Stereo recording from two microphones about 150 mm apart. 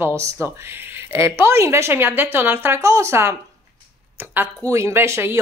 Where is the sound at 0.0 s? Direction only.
20° right (ahead or behind).